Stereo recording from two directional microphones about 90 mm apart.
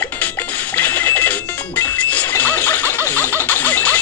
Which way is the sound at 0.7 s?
25° left (ahead or behind).